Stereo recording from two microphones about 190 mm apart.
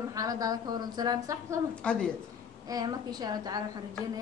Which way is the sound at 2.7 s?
20° right (ahead or behind).